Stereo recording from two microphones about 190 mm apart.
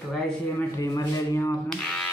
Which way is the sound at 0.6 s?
15° left (ahead or behind).